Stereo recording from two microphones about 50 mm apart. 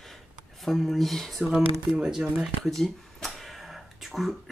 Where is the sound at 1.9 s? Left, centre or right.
Centre.